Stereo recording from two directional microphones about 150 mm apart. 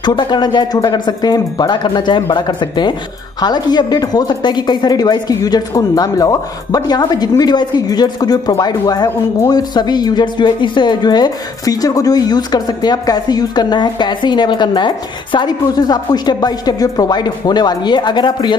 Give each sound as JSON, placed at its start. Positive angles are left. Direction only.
{"t": 0.0, "sound": "speech", "side_deg": 30}